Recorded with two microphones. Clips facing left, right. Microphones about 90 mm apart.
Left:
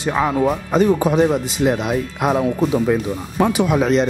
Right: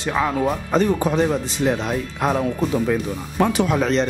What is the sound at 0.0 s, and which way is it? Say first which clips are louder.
Speech: left 3 dB; 10° left (ahead or behind).